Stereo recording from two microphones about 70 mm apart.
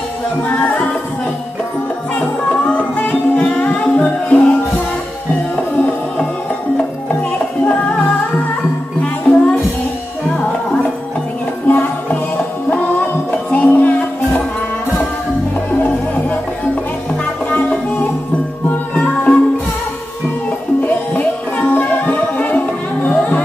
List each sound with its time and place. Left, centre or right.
2.1 s music: centre
9.0 s music: centre
11.6 s music: left
17.1 s music: centre
20.8 s music: centre